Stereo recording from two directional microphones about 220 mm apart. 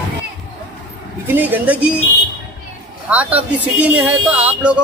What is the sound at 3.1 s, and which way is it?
Speech, 5° right (ahead or behind).